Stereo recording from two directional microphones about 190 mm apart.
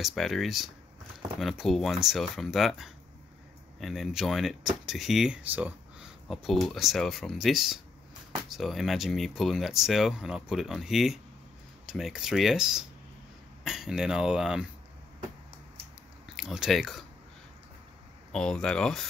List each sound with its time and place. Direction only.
0.0 s speech: centre (ahead or behind)
16.3 s speech: 5° right (ahead or behind)
18.3 s speech: 5° left (ahead or behind)